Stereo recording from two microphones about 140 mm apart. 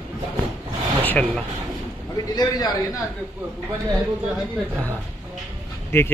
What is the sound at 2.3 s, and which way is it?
Speech, 30° left (ahead or behind).